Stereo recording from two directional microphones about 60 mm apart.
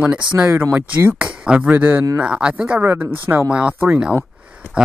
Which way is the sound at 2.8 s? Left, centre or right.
Right.